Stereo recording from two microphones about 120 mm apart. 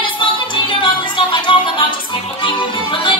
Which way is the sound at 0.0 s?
45° left (ahead or behind).